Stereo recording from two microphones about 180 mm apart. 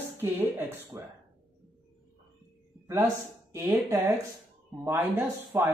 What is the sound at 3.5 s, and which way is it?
Speech, 15° right (ahead or behind).